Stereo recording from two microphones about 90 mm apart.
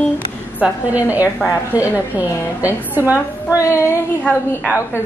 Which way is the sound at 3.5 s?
35° left (ahead or behind).